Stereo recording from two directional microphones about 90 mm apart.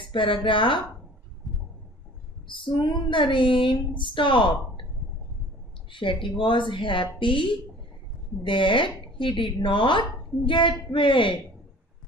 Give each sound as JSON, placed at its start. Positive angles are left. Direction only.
{"t": 0.1, "sound": "speech", "side_deg": 70}
{"t": 2.4, "sound": "speech", "side_deg": 65}
{"t": 5.9, "sound": "a woman's voice", "side_deg": 65}